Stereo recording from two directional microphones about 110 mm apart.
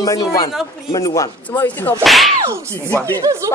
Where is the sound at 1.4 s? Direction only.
15° left (ahead or behind).